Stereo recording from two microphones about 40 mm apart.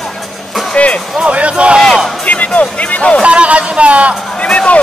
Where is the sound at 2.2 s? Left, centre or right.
Left.